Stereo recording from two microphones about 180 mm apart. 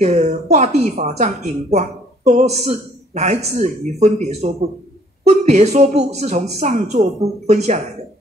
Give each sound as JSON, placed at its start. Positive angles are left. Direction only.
{"t": 0.0, "sound": "a woman's voice", "side_deg": -40}